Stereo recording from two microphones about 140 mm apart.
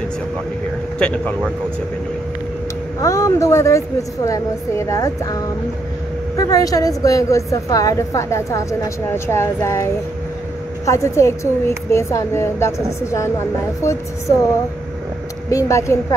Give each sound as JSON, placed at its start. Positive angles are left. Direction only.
{"t": 0.9, "sound": "speech", "side_deg": 10}
{"t": 3.0, "sound": "a woman's voice", "side_deg": 25}
{"t": 10.9, "sound": "a woman's voice", "side_deg": 20}
{"t": 15.5, "sound": "a woman's voice", "side_deg": 20}